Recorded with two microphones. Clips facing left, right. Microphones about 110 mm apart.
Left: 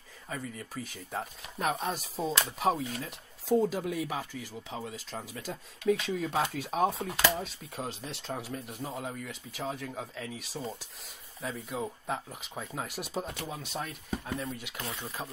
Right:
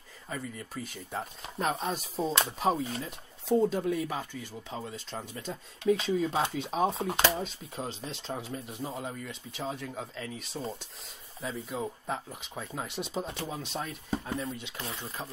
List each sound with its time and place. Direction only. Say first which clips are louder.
0.3 s speech: right 1 dB; centre (ahead or behind)
7.0 s speech: right 4 dB; 30° right (ahead or behind)
7.3 s speech: right 1 dB; centre (ahead or behind)